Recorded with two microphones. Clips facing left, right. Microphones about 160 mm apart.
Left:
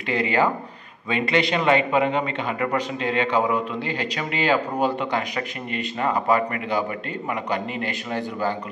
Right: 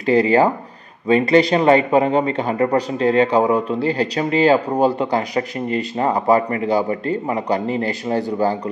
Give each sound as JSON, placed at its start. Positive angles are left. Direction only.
{"t": 0.0, "sound": "speech", "side_deg": -35}